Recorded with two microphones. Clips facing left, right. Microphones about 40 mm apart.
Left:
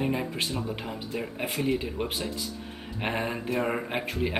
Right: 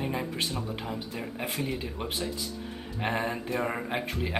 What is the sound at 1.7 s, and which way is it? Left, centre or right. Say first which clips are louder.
Speech: left 5 dB; left.